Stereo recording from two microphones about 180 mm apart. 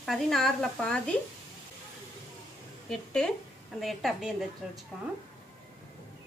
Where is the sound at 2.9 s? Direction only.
5° left (ahead or behind).